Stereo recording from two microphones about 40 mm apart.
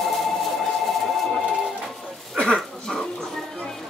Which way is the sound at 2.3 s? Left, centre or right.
Centre.